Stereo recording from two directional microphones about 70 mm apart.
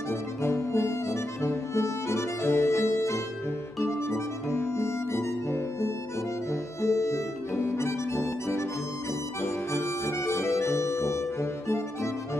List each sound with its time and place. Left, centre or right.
0.1 s music: left
9.4 s accordion: left